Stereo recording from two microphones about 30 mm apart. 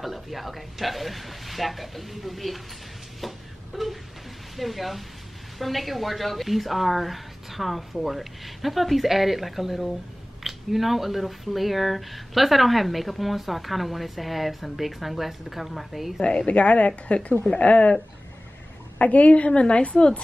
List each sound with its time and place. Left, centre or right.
0.0 s speech: centre
3.2 s a sound: centre
4.6 s speech: centre
16.2 s a woman's voice: left
18.9 s a woman's voice: left